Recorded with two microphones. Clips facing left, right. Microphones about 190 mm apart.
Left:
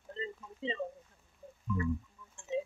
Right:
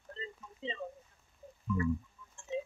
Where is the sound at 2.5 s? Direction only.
20° left (ahead or behind).